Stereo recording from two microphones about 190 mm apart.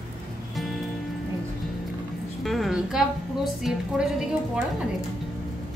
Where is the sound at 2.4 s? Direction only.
Centre (ahead or behind).